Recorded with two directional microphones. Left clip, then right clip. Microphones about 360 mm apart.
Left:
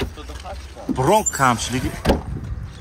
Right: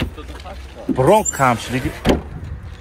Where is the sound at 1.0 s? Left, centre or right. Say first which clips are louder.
Right 3 dB; centre.